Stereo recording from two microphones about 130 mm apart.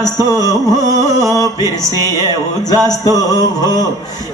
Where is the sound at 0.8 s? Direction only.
25° right (ahead or behind).